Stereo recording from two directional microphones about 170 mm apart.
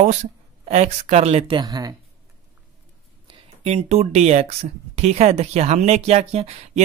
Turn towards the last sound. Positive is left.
turn(degrees=-40)  # may be behind; listen again after turning